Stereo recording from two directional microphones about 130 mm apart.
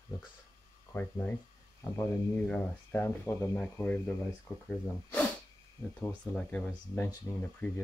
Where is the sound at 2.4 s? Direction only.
10° left (ahead or behind).